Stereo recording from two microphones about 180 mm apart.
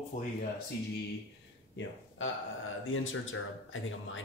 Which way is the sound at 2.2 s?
90° left.